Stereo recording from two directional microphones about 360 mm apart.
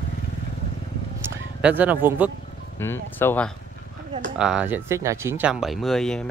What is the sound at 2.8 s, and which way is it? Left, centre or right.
Speech, centre.